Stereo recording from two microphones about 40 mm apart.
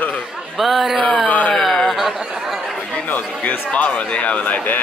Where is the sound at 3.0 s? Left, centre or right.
Left.